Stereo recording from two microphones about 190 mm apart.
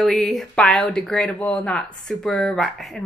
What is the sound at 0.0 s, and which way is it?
Speech, centre (ahead or behind).